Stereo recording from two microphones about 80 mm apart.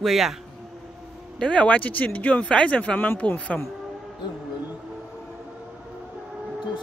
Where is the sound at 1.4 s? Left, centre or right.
Centre.